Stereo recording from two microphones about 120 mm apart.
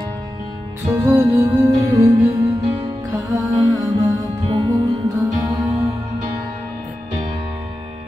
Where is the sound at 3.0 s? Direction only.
30° right (ahead or behind).